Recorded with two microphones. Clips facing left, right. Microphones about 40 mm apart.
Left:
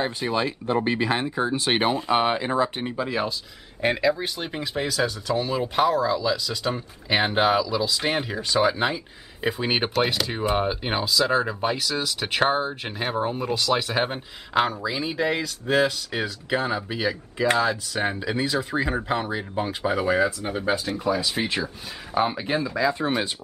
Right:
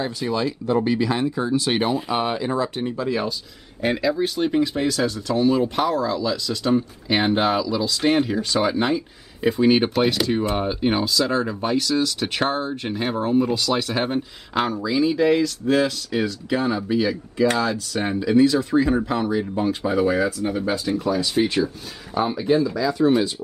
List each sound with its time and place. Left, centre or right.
0.0 s speech: left
3.1 s speech: centre
22.1 s speech: left